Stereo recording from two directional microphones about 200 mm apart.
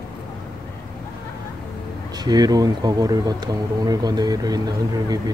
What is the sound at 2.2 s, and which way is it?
Speech, 20° right (ahead or behind).